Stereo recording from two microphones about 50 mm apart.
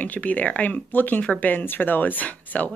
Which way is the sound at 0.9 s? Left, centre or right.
Left.